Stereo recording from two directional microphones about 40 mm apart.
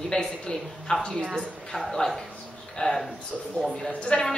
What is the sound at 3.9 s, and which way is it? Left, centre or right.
Speech, left.